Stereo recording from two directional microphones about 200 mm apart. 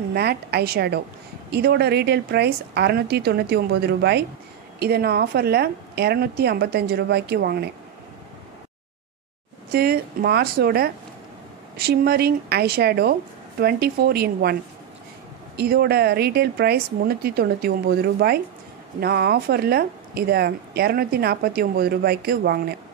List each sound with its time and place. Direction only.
0.1 s a woman's voice: 55° right (ahead or behind)
9.7 s speech: 50° right (ahead or behind)